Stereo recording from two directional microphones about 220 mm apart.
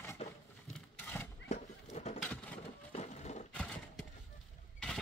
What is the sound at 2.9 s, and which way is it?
Sewing machine, 30° left (ahead or behind).